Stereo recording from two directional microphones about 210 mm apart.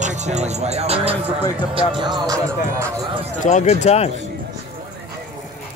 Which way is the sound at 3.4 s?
35° left (ahead or behind).